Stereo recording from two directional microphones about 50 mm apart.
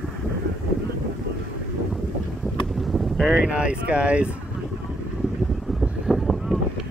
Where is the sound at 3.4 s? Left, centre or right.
Right.